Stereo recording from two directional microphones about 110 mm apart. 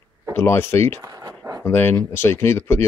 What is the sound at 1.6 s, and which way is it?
Speech, 20° left (ahead or behind).